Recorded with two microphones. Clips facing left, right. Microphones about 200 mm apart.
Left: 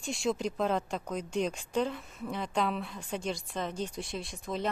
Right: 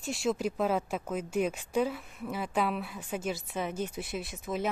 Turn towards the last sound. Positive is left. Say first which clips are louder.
# right 1 dB
turn(degrees=-5)  # may be behind; listen again after turning